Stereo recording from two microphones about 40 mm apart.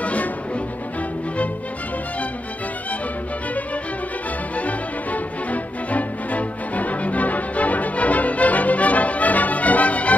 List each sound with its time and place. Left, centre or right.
0.0 s music: left
4.6 s music: left